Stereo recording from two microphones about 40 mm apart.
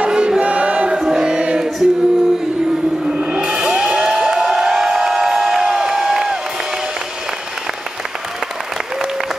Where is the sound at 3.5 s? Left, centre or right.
Centre.